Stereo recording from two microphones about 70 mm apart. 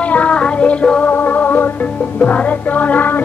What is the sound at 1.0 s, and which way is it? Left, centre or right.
Music, left.